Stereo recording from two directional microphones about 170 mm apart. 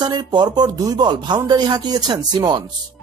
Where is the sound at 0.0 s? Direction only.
25° right (ahead or behind).